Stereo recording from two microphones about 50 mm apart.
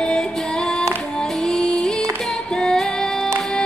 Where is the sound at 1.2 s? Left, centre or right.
Centre.